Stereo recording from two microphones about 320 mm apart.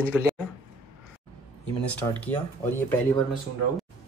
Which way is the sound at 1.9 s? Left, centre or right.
Centre.